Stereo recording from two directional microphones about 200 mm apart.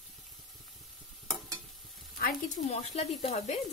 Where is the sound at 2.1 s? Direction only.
45° left (ahead or behind).